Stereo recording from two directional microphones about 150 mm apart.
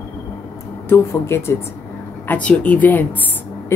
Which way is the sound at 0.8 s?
15° left (ahead or behind).